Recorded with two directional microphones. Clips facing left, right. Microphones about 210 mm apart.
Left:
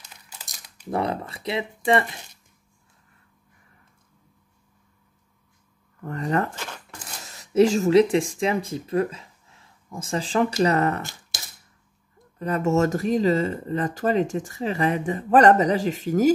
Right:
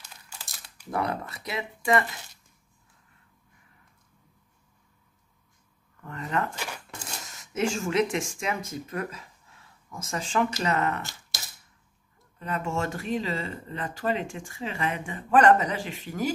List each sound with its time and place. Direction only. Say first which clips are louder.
0.4 s speech: left 1 dB; 25° left (ahead or behind)
6.0 s speech: left 6 dB; 40° left (ahead or behind)
6.5 s a sound: even; 10° right (ahead or behind)
7.2 s speech: left 10 dB; 35° left (ahead or behind)
12.4 s speech: left 9 dB; 40° left (ahead or behind)